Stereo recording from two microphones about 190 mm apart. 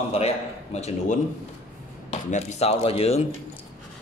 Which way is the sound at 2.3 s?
35° left (ahead or behind).